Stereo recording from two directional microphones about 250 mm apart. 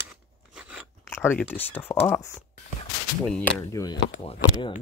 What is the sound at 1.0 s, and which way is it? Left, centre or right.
Speech, centre.